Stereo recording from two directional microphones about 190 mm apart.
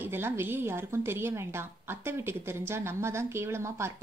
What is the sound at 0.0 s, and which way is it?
A woman's voice, 10° right (ahead or behind).